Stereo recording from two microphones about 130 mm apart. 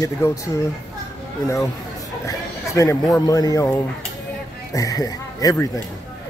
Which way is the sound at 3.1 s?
25° left (ahead or behind).